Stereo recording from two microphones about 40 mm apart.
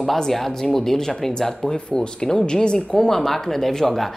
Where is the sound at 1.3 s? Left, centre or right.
Centre.